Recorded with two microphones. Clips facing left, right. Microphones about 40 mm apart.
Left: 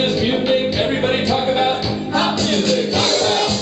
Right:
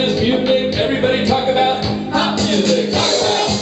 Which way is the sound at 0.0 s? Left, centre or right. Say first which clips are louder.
Right 2 dB; centre.